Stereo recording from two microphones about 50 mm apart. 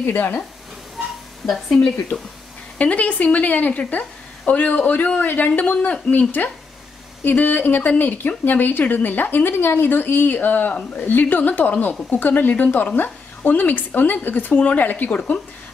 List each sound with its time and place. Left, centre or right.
0.0 s speech: left
1.4 s speech: centre
2.8 s a woman's voice: left
15.0 s a woman's voice: left